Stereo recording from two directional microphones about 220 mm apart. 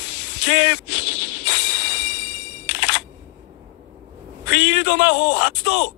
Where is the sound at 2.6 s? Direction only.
50° left (ahead or behind).